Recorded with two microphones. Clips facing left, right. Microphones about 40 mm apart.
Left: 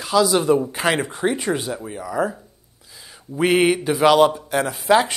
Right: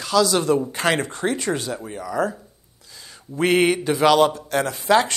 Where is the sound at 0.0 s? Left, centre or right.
Centre.